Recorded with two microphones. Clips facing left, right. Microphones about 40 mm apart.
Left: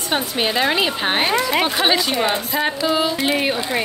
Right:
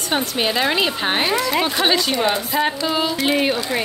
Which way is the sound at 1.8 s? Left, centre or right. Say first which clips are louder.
Even; centre.